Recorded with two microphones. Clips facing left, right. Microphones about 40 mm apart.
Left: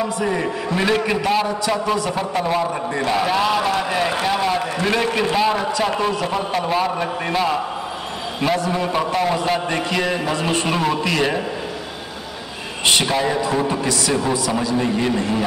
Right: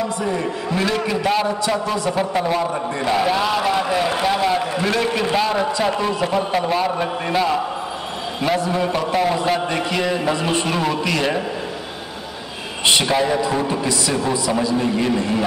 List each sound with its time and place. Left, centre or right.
0.7 s a man's voice: centre
1.2 s a man's voice: centre
13.0 s a man's voice: centre
14.8 s a man's voice: centre